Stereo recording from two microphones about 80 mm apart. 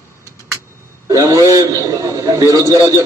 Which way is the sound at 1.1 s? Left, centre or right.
Right.